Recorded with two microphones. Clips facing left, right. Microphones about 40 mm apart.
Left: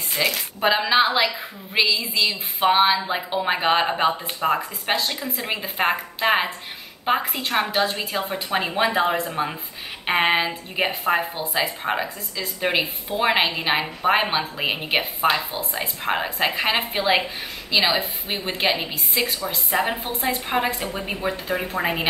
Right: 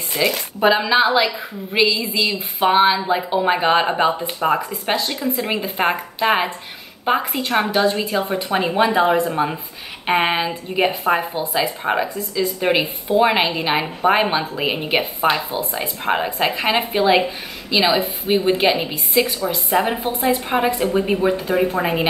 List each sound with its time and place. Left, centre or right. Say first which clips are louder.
0.1 s a woman's voice: right 4 dB; centre